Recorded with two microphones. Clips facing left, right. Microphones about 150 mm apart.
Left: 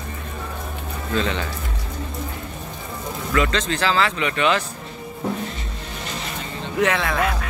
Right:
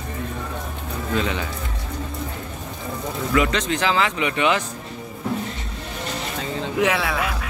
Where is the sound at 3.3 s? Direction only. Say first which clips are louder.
Even; 15° right (ahead or behind).